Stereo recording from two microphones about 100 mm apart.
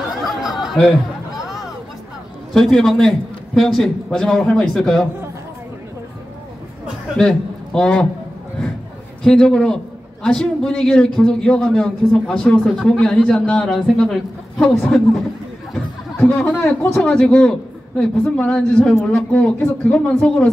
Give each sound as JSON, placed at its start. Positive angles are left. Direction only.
{"t": 0.2, "sound": "a sound", "side_deg": 0}
{"t": 2.5, "sound": "a man's voice", "side_deg": 5}
{"t": 7.2, "sound": "a man's voice", "side_deg": 5}
{"t": 9.2, "sound": "a man's voice", "side_deg": 5}
{"t": 16.5, "sound": "speech", "side_deg": 25}
{"t": 17.0, "sound": "a man's voice", "side_deg": 5}